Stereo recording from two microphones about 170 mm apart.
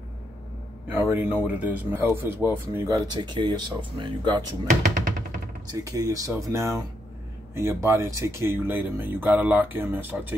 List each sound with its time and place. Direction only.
0.8 s a man's voice: 10° right (ahead or behind)
5.7 s a man's voice: 20° right (ahead or behind)